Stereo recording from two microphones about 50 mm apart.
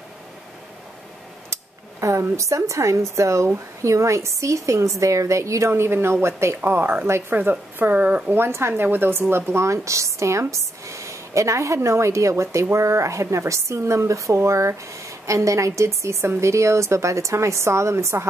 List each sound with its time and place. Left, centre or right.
1.5 s speech: right
3.8 s speech: right
5.7 s a woman's voice: right
6.6 s a woman's voice: right
7.1 s speech: right
7.3 s speech: right
8.5 s speech: right
8.8 s a woman's voice: right
9.3 s a woman's voice: right